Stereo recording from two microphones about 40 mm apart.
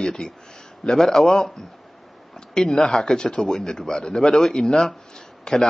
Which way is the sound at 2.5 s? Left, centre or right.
Centre.